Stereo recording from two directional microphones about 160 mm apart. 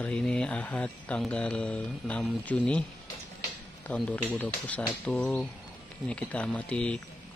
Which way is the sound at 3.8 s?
10° left (ahead or behind).